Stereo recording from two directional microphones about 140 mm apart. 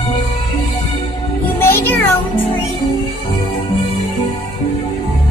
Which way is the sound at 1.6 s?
15° left (ahead or behind).